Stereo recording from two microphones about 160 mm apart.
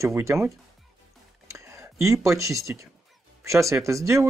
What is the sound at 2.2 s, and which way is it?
Speech, 20° right (ahead or behind).